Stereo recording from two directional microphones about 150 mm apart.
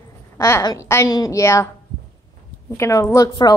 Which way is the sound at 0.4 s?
20° left (ahead or behind).